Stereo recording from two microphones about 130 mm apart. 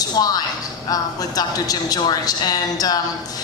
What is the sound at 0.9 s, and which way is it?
A woman's voice, 30° left (ahead or behind).